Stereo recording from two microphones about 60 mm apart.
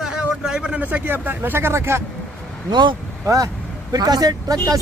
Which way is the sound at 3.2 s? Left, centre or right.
Right.